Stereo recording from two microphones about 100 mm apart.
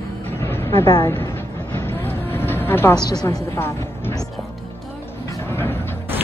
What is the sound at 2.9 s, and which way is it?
Speech, 40° left (ahead or behind).